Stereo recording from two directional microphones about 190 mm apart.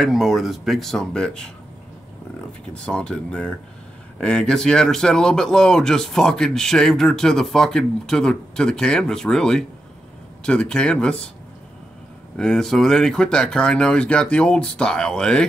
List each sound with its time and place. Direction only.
0.0 s speech: centre (ahead or behind)
2.7 s speech: 5° left (ahead or behind)
12.4 s speech: 5° left (ahead or behind)